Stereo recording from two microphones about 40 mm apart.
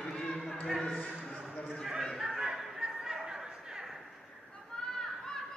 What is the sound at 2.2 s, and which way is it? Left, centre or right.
Music, centre.